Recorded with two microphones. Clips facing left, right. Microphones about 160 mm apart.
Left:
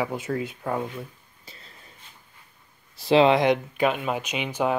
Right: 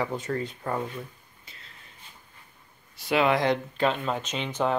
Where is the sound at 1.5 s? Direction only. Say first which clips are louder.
Left 5 dB; 35° left (ahead or behind).